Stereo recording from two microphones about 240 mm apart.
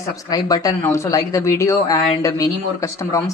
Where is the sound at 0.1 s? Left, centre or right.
Centre.